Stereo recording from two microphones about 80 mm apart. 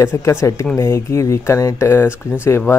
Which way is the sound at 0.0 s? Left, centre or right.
Left.